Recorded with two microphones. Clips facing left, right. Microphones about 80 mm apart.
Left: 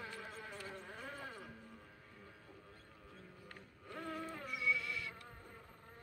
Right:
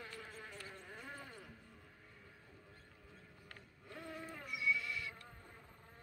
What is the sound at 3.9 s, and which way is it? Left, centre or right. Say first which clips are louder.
Music: left 4 dB; left.